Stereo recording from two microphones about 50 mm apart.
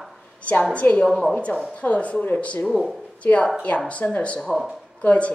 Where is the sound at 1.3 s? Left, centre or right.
Left.